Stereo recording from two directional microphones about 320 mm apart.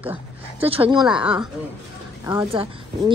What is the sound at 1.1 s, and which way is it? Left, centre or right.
A woman's voice, centre.